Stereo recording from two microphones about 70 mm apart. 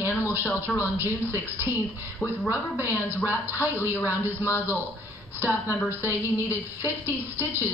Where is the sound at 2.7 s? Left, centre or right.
Right.